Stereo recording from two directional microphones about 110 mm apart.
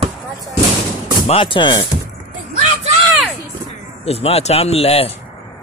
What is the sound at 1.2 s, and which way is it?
Speech, 55° left (ahead or behind).